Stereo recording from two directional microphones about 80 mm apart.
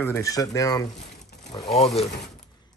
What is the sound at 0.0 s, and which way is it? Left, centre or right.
Speech, left.